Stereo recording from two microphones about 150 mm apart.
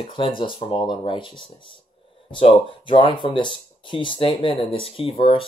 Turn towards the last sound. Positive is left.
turn(degrees=35)  # may be behind; listen again after turning